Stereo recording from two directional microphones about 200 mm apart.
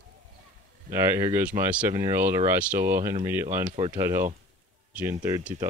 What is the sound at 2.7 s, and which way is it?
Speech, 45° right (ahead or behind).